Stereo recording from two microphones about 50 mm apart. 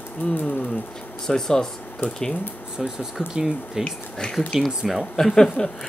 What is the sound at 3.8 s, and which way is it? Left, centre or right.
Speech, centre.